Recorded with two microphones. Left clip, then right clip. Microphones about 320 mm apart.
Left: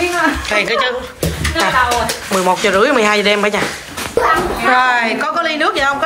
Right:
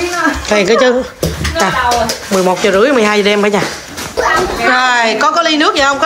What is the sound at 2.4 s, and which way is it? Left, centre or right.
Speech, centre.